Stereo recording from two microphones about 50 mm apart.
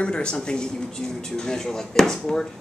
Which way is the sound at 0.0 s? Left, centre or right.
Centre.